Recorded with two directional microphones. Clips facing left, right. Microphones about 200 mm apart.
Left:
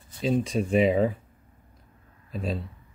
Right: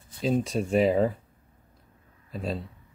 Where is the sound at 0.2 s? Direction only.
Centre (ahead or behind).